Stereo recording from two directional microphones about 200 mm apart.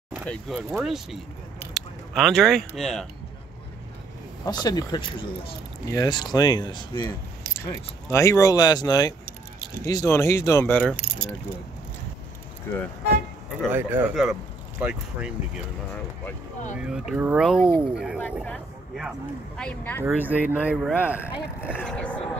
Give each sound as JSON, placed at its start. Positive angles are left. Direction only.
{"t": 0.1, "sound": "speech", "side_deg": 0}
{"t": 4.5, "sound": "speech", "side_deg": 20}
{"t": 13.7, "sound": "speech", "side_deg": -10}
{"t": 16.7, "sound": "speech", "side_deg": -5}
{"t": 20.0, "sound": "speech", "side_deg": -10}
{"t": 21.7, "sound": "speech", "side_deg": 5}